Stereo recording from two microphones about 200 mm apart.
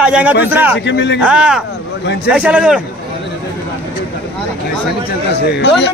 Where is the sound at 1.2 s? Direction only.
5° right (ahead or behind).